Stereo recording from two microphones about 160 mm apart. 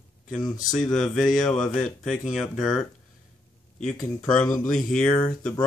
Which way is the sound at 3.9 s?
20° left (ahead or behind).